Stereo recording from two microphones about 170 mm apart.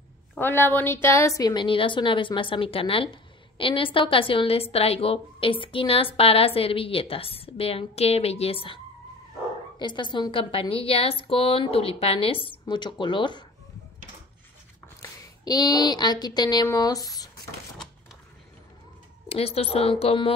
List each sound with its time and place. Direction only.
0.3 s a woman's voice: 10° left (ahead or behind); by 13.4 s 25° left (ahead or behind)
15.0 s speech: 25° left (ahead or behind)
19.2 s a woman's voice: 35° left (ahead or behind)